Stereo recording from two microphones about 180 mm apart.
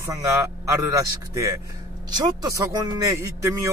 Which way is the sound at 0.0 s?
15° right (ahead or behind).